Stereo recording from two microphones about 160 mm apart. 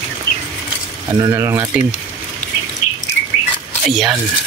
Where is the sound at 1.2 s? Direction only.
20° right (ahead or behind).